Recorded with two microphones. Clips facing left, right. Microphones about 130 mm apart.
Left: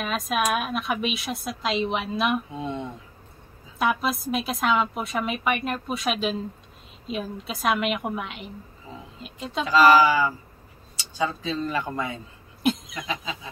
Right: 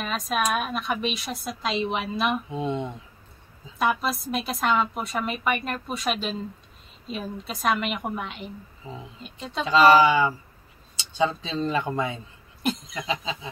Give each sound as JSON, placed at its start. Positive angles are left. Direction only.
{"t": 0.0, "sound": "a woman's voice", "side_deg": 0}
{"t": 2.5, "sound": "speech", "side_deg": -20}
{"t": 3.7, "sound": "a woman's voice", "side_deg": 0}
{"t": 8.9, "sound": "speech", "side_deg": -25}
{"t": 9.2, "sound": "a woman's voice", "side_deg": 0}
{"t": 9.7, "sound": "speech", "side_deg": -25}
{"t": 12.6, "sound": "a sound", "side_deg": 0}
{"t": 13.0, "sound": "speech", "side_deg": -25}